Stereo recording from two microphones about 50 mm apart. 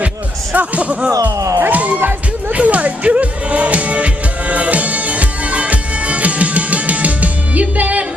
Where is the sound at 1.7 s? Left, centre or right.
Right.